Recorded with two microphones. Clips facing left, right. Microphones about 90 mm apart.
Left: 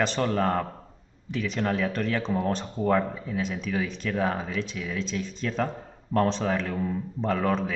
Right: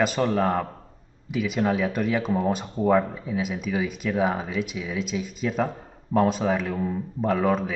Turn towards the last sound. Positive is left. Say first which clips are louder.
# right 3 dB
turn(degrees=-5)  # may be behind; listen again after turning